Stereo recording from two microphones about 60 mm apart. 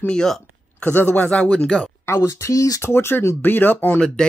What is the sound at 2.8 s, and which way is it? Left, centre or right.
Speech, left.